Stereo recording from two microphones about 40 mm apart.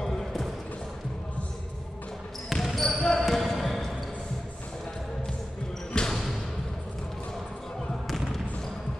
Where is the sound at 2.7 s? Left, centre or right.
Centre.